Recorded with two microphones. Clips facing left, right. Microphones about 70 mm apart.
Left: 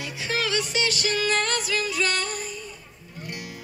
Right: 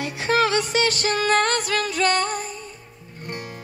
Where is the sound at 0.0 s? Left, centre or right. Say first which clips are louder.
Right 8 dB; right.